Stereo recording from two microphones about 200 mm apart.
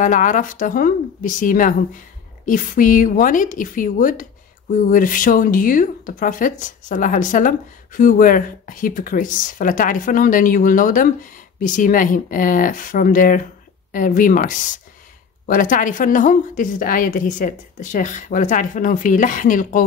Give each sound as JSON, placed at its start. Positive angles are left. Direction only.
{"t": 0.0, "sound": "speech", "side_deg": 40}